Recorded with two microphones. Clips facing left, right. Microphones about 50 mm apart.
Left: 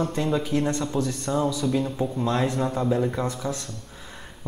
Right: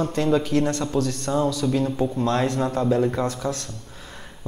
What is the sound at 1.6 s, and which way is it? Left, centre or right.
Speech, centre.